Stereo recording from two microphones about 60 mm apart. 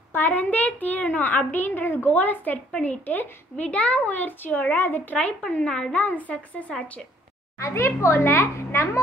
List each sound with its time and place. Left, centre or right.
0.1 s a woman's voice: left
5.5 s a woman's voice: centre
5.9 s speech: left
7.5 s a child's voice: left